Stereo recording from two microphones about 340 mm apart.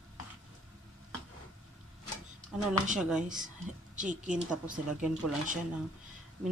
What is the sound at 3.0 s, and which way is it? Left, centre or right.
Speech, centre.